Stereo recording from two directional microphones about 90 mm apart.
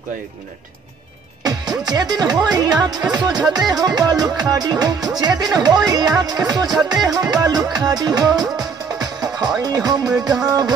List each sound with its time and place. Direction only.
1.4 s music: 50° right (ahead or behind)
3.4 s music: 5° right (ahead or behind)
3.7 s music: 50° right (ahead or behind)